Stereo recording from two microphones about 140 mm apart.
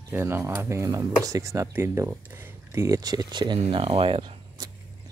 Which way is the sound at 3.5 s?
45° right (ahead or behind).